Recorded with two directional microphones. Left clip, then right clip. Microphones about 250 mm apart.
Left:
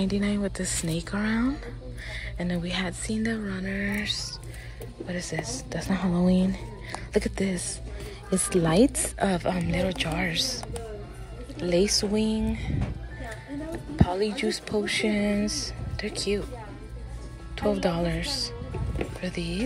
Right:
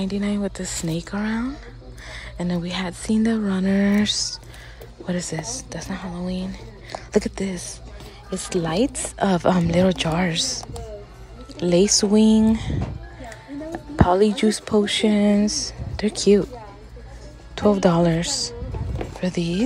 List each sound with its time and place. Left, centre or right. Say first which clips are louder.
0.0 s speech: right 2 dB; centre
9.2 s speech: right 7 dB; centre
14.0 s speech: right 9 dB; right
17.6 s speech: right 8 dB; centre